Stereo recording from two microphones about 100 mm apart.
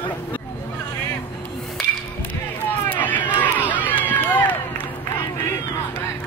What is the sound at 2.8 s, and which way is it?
Crowd, 15° left (ahead or behind).